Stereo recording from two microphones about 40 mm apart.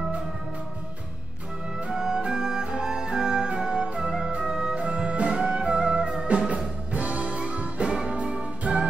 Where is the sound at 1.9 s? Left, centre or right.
Centre.